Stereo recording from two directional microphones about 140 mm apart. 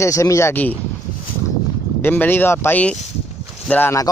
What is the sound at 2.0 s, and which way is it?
Speech, 15° left (ahead or behind).